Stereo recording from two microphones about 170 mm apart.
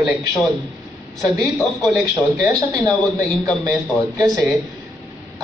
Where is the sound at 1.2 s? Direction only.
20° right (ahead or behind).